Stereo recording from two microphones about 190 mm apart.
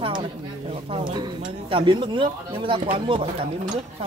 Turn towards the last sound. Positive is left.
turn(degrees=-25)  # may be behind; listen again after turning